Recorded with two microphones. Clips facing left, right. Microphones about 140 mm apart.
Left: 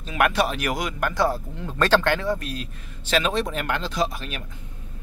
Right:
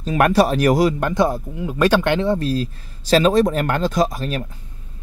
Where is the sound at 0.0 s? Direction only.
40° right (ahead or behind).